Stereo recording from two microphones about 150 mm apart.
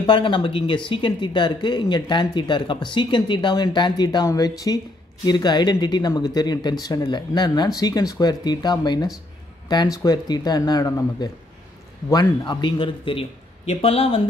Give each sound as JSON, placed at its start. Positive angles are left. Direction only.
{"t": 0.0, "sound": "speech", "side_deg": 30}